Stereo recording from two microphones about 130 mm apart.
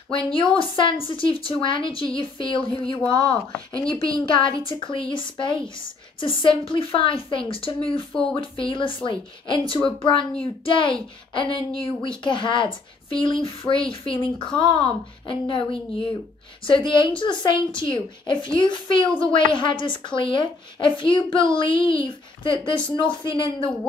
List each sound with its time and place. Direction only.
0.3 s a woman's voice: 40° left (ahead or behind)
3.0 s speech: 10° left (ahead or behind)
4.4 s a woman's voice: 40° left (ahead or behind)
8.1 s speech: 5° left (ahead or behind)
8.4 s a woman's voice: 40° left (ahead or behind)